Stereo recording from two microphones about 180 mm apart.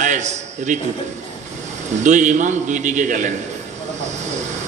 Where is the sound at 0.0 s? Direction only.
40° right (ahead or behind).